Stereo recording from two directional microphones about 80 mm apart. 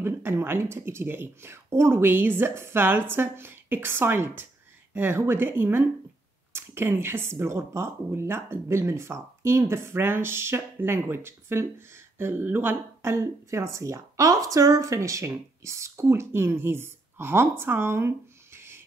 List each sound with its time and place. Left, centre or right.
0.0 s speech: right